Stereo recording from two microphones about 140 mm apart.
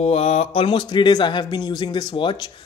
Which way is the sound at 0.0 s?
50° left (ahead or behind).